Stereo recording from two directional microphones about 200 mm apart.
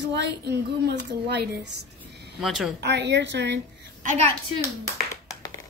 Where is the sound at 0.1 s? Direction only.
60° right (ahead or behind).